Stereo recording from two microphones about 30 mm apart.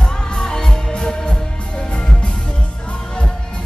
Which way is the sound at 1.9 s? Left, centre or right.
Left.